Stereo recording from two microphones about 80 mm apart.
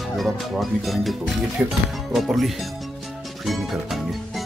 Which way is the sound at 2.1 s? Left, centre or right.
Centre.